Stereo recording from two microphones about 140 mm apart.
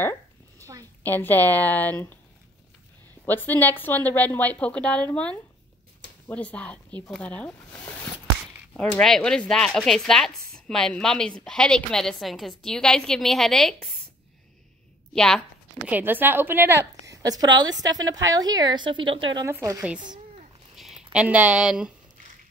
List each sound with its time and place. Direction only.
0.6 s a sound: 25° right (ahead or behind)
1.0 s a woman's voice: 15° left (ahead or behind)
3.3 s a woman's voice: 15° left (ahead or behind)
15.1 s speech: 5° left (ahead or behind)
15.9 s a woman's voice: 15° right (ahead or behind); by 19.4 s 35° right (ahead or behind)
19.4 s a woman's voice: 20° right (ahead or behind)
20.7 s speech: 5° right (ahead or behind)